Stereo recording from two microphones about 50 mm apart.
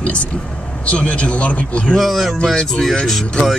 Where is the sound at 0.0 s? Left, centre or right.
Left.